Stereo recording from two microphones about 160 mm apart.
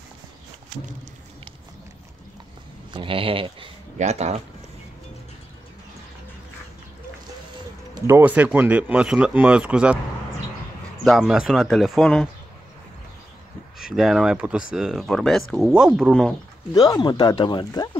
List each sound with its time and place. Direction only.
2.9 s speech: 35° right (ahead or behind)
8.1 s speech: 10° right (ahead or behind)
11.1 s speech: 5° right (ahead or behind)
13.7 s speech: 5° right (ahead or behind)
16.7 s speech: 25° left (ahead or behind)